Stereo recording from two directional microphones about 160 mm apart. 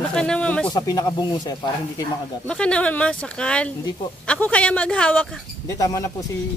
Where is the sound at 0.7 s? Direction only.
25° left (ahead or behind).